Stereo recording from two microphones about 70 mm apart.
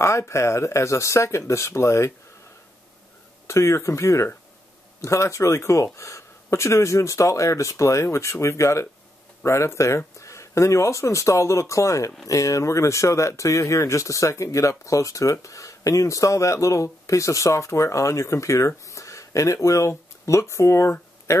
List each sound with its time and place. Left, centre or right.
0.0 s speech: left
3.4 s speech: left